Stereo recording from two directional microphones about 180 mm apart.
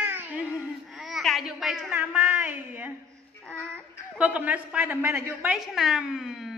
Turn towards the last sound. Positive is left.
turn(degrees=0)  # may be behind; listen again after turning